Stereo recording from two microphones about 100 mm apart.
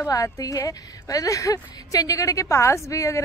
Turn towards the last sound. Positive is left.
turn(degrees=30)  # may be behind; listen again after turning